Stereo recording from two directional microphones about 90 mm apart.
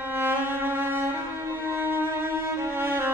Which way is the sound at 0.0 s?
25° right (ahead or behind).